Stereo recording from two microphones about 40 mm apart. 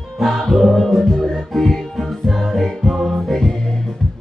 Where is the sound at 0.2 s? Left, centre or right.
Centre.